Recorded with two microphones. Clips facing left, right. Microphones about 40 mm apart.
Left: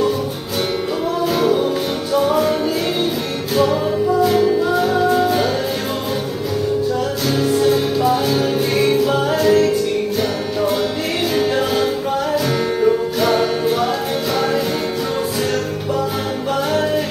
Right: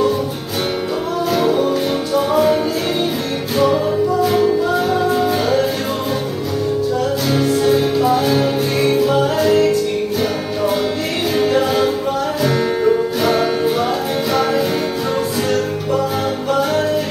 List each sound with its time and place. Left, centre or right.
1.4 s music: centre
4.2 s music: centre
7.3 s music: centre
11.3 s music: centre